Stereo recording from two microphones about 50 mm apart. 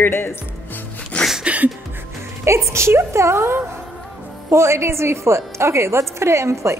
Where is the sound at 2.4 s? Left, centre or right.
Right.